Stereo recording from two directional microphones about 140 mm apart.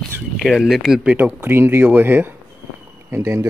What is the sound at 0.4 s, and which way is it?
Speech, centre (ahead or behind).